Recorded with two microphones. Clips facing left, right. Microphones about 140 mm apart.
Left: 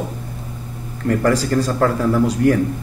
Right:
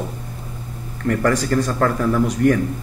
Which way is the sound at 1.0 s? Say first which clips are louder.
Left 1 dB; 25° left (ahead or behind).